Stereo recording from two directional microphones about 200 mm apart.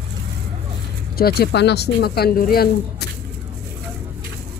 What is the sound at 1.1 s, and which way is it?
Speech, 50° left (ahead or behind).